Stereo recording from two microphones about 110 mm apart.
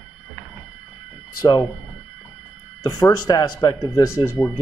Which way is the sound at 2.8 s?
35° left (ahead or behind).